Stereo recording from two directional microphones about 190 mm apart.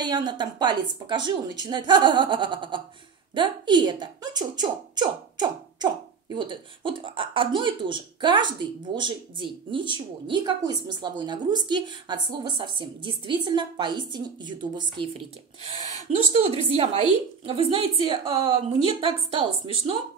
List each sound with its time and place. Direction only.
0.0 s a woman's voice: 20° right (ahead or behind)